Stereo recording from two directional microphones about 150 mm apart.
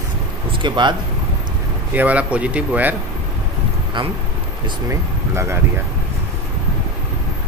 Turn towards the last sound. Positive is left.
turn(degrees=-20)  # may be behind; listen again after turning